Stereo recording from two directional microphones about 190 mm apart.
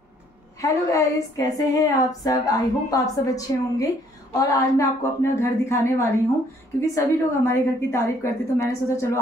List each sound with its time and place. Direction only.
0.6 s a woman's voice: 15° left (ahead or behind)